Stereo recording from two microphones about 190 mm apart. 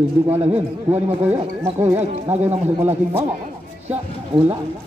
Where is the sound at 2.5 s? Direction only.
35° right (ahead or behind).